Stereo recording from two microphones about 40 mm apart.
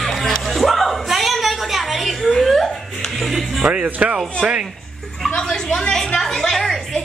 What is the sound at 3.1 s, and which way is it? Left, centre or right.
Music, centre.